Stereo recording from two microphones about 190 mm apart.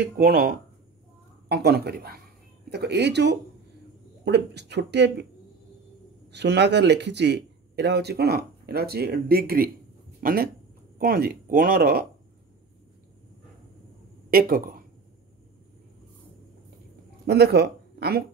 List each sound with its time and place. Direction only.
0.2 s speech: 50° right (ahead or behind)
6.3 s speech: 60° right (ahead or behind)
14.3 s speech: 50° right (ahead or behind)
17.3 s speech: 60° right (ahead or behind)